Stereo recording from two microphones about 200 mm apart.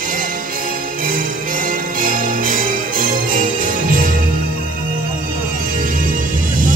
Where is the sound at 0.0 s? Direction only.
45° right (ahead or behind).